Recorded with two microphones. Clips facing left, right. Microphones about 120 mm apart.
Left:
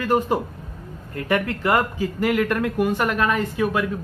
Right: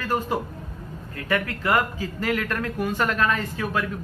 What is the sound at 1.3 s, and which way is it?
Speech, 20° left (ahead or behind).